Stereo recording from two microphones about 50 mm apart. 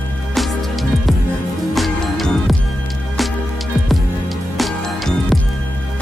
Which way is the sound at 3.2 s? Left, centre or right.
Centre.